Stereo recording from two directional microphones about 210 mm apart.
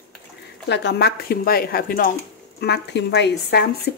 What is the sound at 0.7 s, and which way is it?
Speech, 55° left (ahead or behind).